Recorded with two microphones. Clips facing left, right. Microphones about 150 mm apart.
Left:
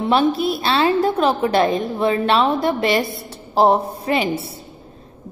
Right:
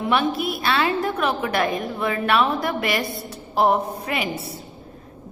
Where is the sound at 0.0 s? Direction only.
30° left (ahead or behind).